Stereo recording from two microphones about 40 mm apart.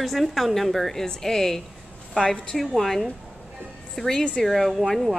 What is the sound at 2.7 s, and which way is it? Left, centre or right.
A woman's voice, centre.